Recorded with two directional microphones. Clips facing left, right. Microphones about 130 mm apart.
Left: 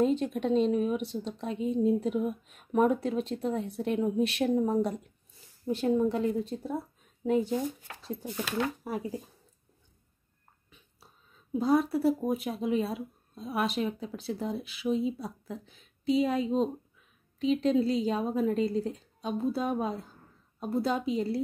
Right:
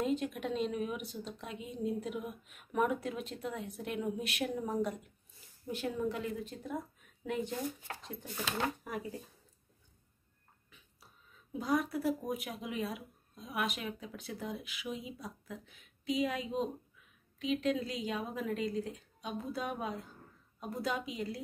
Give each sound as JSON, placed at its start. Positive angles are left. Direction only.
{"t": 0.0, "sound": "speech", "side_deg": 30}
{"t": 8.8, "sound": "speech", "side_deg": 35}
{"t": 11.5, "sound": "speech", "side_deg": 30}